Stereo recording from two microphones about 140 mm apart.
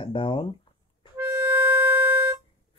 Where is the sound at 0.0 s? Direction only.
35° left (ahead or behind).